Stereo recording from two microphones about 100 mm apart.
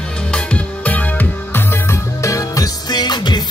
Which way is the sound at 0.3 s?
15° left (ahead or behind).